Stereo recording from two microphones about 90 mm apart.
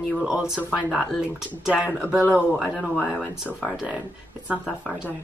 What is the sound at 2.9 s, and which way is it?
Speech, 15° left (ahead or behind).